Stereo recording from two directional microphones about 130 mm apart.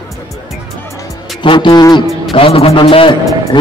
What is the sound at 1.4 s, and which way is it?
A man's voice, 40° left (ahead or behind).